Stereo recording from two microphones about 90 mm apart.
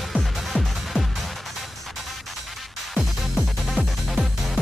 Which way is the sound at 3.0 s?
Centre (ahead or behind).